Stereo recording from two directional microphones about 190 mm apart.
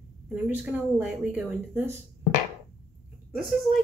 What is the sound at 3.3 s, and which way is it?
Speech, centre (ahead or behind).